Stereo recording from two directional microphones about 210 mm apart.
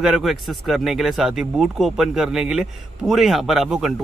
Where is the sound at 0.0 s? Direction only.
Centre (ahead or behind).